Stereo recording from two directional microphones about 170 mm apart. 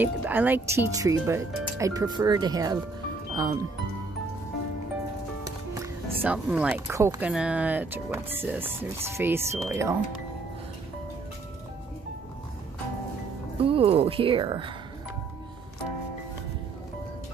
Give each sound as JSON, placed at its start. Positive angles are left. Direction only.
{"t": 0.0, "sound": "speech", "side_deg": -10}
{"t": 5.8, "sound": "speech", "side_deg": -10}
{"t": 7.0, "sound": "speech", "side_deg": -15}
{"t": 7.2, "sound": "speech", "side_deg": -5}
{"t": 13.6, "sound": "speech", "side_deg": -35}